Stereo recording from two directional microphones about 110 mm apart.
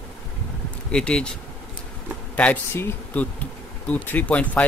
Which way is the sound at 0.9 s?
10° left (ahead or behind).